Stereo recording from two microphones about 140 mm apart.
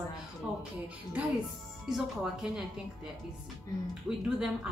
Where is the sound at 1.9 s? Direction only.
5° right (ahead or behind).